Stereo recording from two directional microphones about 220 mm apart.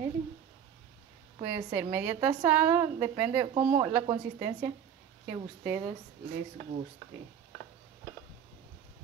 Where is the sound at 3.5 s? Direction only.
20° right (ahead or behind).